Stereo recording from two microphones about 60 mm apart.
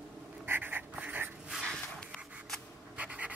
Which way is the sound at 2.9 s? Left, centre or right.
Right.